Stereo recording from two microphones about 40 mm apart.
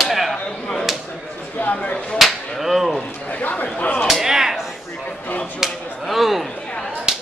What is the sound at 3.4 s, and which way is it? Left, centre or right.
Chatter, left.